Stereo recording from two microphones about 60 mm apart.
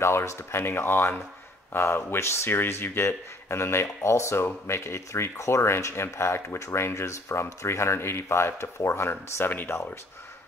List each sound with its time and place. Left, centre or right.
0.0 s speech: left